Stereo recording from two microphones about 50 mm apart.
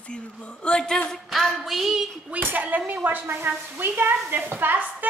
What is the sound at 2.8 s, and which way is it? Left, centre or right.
Speech, right.